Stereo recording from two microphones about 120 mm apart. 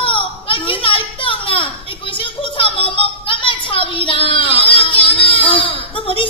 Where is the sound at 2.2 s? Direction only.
50° left (ahead or behind).